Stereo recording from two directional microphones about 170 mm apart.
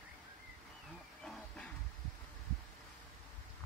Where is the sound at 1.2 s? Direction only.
5° left (ahead or behind).